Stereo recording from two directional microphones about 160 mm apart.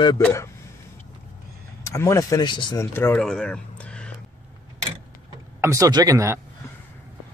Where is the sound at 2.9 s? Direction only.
15° left (ahead or behind).